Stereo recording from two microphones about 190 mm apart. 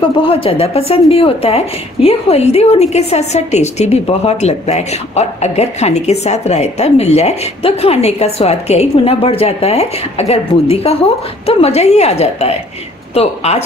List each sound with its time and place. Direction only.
0.3 s a woman's voice: 30° left (ahead or behind)